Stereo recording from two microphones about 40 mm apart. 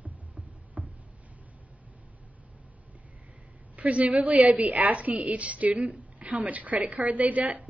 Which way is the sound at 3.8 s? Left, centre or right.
Right.